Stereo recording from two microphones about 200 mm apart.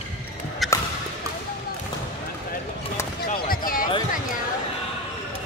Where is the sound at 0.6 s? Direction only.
Centre (ahead or behind).